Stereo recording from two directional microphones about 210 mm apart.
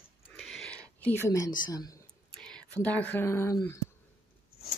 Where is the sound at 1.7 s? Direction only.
15° left (ahead or behind).